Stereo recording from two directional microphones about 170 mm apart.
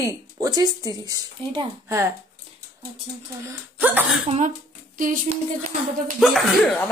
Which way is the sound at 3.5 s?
10° right (ahead or behind).